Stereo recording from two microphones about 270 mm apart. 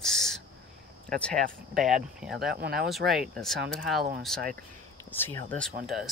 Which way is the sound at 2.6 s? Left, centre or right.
Right.